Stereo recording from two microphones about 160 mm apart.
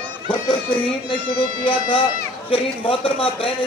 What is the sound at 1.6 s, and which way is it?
Speech, 30° left (ahead or behind).